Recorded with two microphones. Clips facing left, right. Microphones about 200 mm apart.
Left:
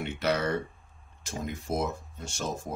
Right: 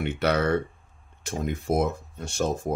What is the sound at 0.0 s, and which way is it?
Speech, 60° right (ahead or behind).